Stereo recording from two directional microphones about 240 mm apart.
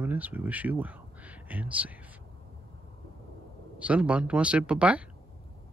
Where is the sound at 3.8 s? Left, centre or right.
Centre.